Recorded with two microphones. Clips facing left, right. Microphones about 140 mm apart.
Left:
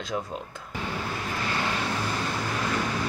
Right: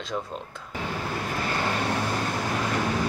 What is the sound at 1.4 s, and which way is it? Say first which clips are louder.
Vehicle: right 2 dB; 45° right (ahead or behind).